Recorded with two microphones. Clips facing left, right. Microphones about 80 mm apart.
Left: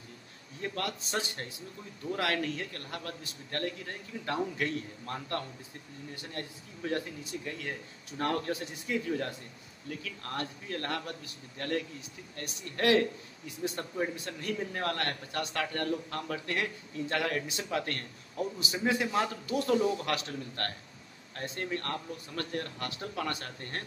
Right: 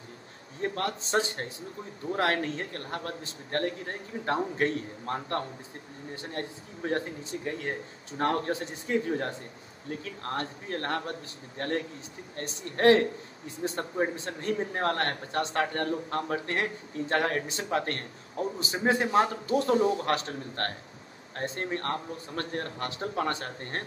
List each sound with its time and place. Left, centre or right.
0.6 s a man's voice: right